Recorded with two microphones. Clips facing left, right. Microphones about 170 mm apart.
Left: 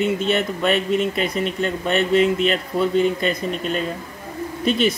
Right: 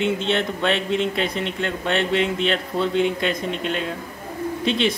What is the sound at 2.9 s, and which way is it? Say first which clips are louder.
Speech: left 2 dB; 90° right.